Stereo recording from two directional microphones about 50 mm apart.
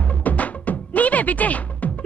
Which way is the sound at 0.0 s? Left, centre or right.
Left.